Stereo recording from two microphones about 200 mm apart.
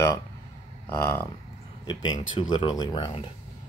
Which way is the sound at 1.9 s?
20° left (ahead or behind).